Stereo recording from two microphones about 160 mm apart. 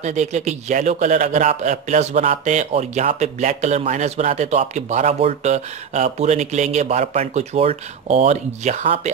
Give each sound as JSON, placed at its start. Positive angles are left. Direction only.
{"t": 0.0, "sound": "a man's voice", "side_deg": -45}